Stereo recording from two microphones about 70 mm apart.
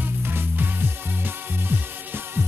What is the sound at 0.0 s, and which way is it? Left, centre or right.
Music, right.